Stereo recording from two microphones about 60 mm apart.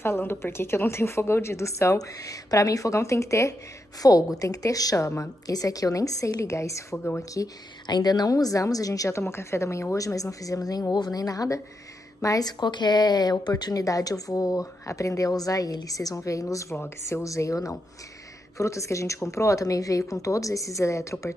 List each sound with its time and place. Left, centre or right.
0.0 s a woman's voice: left
2.0 s a woman's voice: left
4.0 s speech: left
5.5 s a woman's voice: left
8.1 s speech: left
9.3 s speech: left
13.3 s a woman's voice: left